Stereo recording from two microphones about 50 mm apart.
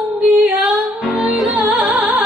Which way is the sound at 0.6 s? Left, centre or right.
Centre.